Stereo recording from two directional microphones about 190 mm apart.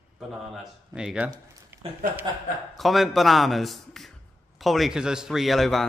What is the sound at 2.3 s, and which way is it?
Speech, 20° right (ahead or behind).